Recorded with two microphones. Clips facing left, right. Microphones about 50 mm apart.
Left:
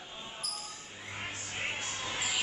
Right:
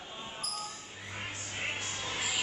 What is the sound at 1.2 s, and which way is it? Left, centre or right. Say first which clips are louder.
Music: even; left.